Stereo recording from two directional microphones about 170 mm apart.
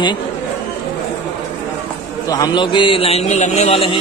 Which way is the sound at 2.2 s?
25° left (ahead or behind).